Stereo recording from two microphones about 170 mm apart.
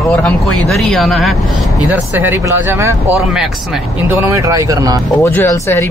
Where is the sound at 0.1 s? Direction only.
5° left (ahead or behind).